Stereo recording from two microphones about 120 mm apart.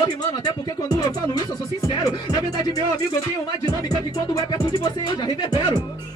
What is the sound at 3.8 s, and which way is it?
Speech, 30° left (ahead or behind).